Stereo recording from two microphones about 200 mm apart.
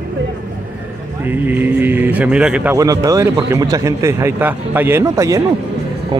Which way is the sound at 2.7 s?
15° right (ahead or behind).